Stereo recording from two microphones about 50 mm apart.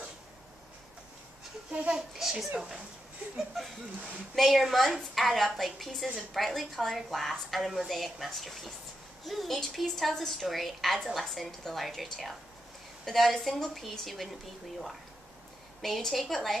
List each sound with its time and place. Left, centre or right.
1.7 s speech: centre
3.3 s a woman's voice: centre
15.8 s a woman's voice: centre